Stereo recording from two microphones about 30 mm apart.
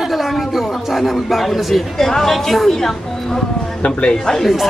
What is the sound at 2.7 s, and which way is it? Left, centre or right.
Speech, centre.